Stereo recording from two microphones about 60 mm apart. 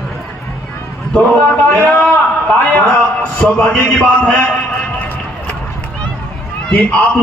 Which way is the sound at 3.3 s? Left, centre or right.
Left.